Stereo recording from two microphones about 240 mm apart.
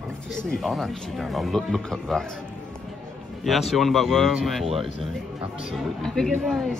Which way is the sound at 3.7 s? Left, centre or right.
Centre.